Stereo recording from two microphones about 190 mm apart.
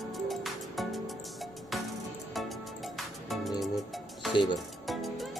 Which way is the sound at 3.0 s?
Centre (ahead or behind).